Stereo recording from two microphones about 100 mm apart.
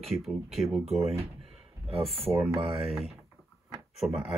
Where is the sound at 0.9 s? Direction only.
90° right.